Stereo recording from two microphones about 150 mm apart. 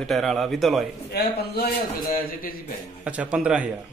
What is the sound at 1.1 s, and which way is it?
Speech, 90° left.